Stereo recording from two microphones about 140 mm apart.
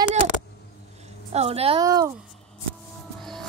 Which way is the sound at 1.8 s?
25° right (ahead or behind).